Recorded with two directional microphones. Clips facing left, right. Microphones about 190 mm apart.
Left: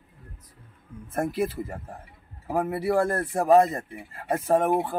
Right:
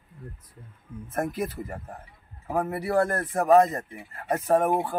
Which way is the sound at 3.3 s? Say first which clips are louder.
Even; 10° left (ahead or behind).